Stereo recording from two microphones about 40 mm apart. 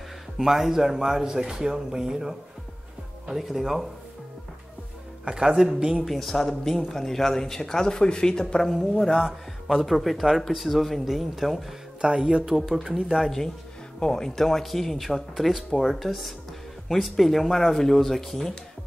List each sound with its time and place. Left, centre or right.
0.4 s a man's voice: centre
5.2 s speech: right
6.0 s speech: centre
9.2 s a man's voice: centre
9.8 s speech: centre
12.0 s speech: right
12.5 s a man's voice: centre
12.8 s speech: centre
13.9 s speech: centre